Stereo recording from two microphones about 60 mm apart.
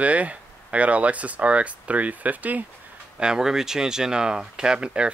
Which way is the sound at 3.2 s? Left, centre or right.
Centre.